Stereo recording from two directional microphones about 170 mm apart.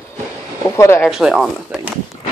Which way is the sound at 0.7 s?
15° left (ahead or behind).